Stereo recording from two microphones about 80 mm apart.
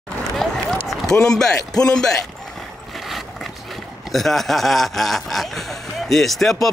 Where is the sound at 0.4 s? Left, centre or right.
Centre.